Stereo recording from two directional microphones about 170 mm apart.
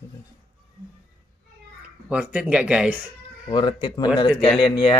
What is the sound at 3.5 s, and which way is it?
Speech, 25° left (ahead or behind).